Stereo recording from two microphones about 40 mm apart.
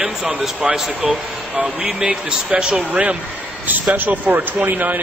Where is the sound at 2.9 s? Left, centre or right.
Right.